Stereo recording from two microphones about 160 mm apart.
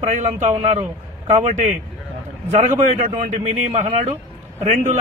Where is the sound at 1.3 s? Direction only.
50° right (ahead or behind).